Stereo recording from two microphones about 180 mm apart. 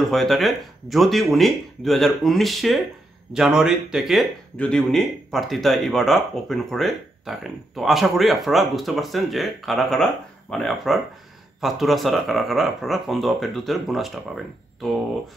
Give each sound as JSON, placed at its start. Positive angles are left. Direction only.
{"t": 0.1, "sound": "speech", "side_deg": 0}